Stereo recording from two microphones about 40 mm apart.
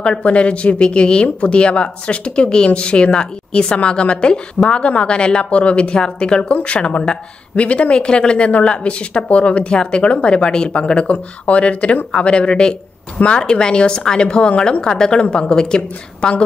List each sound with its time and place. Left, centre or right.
0.0 s speech: left